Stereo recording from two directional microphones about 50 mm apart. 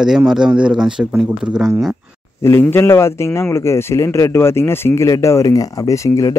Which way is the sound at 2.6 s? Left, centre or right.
Left.